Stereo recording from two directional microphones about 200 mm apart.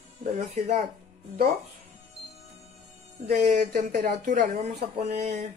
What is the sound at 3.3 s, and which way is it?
Speech, 35° right (ahead or behind).